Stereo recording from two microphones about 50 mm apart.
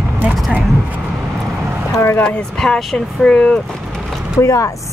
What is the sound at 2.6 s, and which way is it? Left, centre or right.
Speech, centre.